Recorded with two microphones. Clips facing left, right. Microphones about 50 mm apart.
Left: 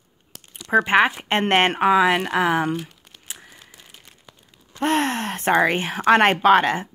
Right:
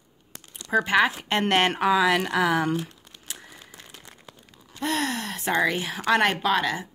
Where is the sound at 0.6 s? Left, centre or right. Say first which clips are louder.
Left 4 dB; left.